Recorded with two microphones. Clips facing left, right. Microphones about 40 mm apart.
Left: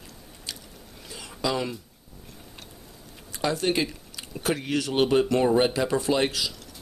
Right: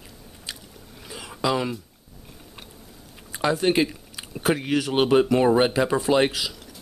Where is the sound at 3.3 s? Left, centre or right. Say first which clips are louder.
Right 4 dB; centre.